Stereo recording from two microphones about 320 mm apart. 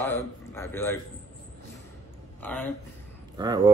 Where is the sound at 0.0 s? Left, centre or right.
Centre.